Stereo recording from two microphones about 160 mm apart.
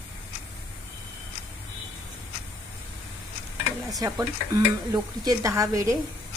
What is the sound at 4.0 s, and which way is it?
Speech, 25° right (ahead or behind).